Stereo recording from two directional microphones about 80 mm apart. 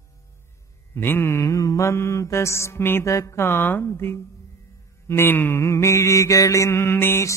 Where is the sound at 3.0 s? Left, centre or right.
Left.